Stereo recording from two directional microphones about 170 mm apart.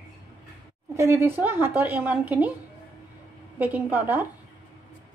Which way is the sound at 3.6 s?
10° right (ahead or behind).